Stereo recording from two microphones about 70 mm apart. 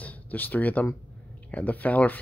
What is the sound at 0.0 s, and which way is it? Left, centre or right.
Speech, left.